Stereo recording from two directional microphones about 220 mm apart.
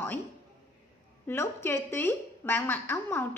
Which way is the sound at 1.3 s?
10° left (ahead or behind).